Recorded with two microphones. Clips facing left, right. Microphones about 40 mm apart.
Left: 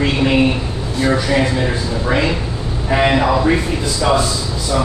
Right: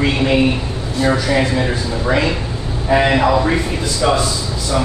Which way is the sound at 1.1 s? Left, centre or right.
Centre.